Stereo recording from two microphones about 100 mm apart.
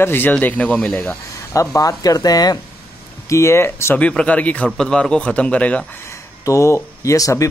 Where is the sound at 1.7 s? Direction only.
40° left (ahead or behind).